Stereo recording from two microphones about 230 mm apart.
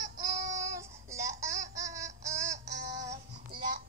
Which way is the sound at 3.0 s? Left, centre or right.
Right.